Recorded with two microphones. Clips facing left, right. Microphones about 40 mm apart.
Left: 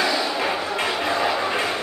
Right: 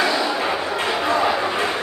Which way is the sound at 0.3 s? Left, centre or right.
Centre.